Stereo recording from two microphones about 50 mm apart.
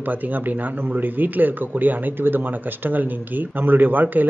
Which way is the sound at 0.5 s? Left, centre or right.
Right.